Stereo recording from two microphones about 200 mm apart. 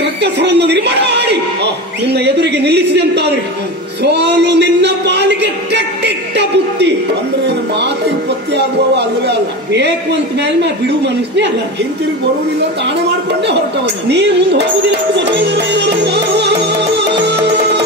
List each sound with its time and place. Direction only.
0.2 s a man's voice: 60° right (ahead or behind)
4.0 s a sound: 60° right (ahead or behind)
8.5 s a man's voice: 55° right (ahead or behind)
14.0 s a man's voice: 55° right (ahead or behind)
15.1 s music: 55° right (ahead or behind)